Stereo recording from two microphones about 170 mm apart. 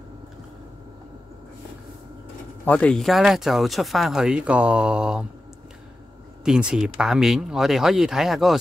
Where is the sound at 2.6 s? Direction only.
5° left (ahead or behind).